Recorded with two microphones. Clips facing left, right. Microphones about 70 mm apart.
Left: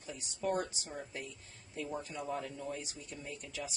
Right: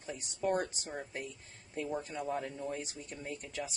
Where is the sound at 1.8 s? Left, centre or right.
Right.